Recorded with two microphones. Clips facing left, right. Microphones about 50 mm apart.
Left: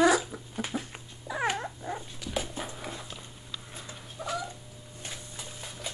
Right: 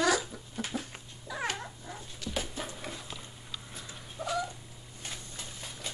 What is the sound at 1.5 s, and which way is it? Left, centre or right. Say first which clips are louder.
Cat: left 7 dB; left.